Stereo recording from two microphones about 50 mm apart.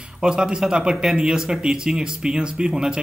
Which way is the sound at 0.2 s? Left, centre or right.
Centre.